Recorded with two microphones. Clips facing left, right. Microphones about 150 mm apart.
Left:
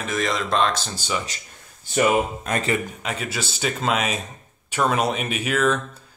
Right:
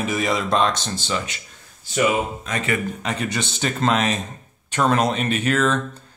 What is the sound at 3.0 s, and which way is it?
Speech, 5° left (ahead or behind).